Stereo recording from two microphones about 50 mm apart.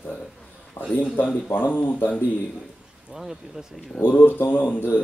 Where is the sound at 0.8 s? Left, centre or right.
Left.